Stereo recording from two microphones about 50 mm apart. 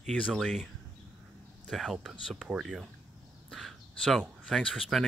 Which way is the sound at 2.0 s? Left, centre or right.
Centre.